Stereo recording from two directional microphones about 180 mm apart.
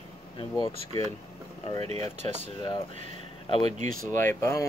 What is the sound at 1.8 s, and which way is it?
Speech, 35° right (ahead or behind).